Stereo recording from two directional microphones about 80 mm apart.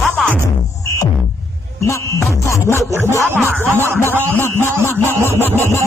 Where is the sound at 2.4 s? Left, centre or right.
Left.